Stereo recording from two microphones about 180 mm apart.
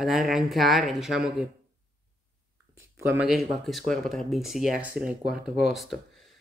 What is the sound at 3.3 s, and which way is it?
Speech, centre (ahead or behind).